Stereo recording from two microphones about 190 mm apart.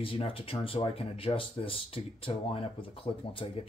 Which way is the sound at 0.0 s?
30° left (ahead or behind).